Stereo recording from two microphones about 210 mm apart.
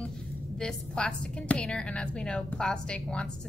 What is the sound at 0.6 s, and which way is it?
A woman's voice, 5° left (ahead or behind).